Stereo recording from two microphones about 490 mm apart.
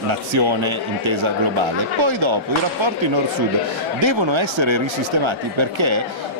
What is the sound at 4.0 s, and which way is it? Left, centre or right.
Speech, right.